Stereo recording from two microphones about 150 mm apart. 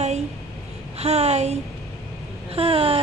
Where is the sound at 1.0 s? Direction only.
45° right (ahead or behind).